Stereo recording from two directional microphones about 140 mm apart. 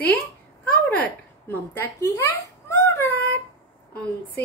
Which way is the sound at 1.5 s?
20° left (ahead or behind).